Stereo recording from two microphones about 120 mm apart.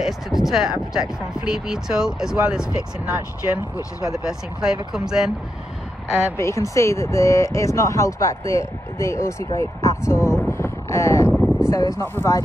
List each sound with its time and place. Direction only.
0.0 s speech: 5° right (ahead or behind)
4.0 s speech: 5° right (ahead or behind)
6.3 s speech: 25° left (ahead or behind)
10.6 s a sound: 25° left (ahead or behind)
11.2 s a sound: 5° right (ahead or behind)
11.7 s speech: 25° left (ahead or behind)